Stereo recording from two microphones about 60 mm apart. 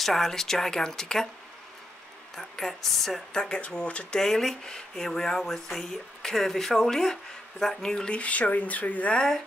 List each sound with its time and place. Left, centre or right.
0.0 s speech: centre
2.3 s speech: centre; by 4.2 s left
4.2 s speech: centre; by 9.2 s left